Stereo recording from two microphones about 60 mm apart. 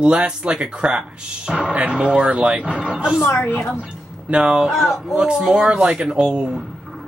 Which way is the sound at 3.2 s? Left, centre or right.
Left.